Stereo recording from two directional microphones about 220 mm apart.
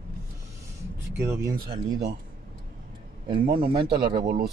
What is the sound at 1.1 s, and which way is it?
Speech, 10° right (ahead or behind).